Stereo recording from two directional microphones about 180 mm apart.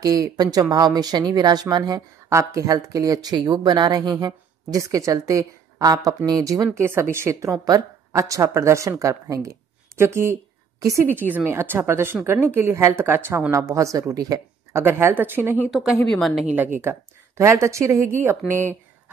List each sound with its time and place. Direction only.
0.0 s a woman's voice: 20° right (ahead or behind)
15.7 s a woman's voice: centre (ahead or behind)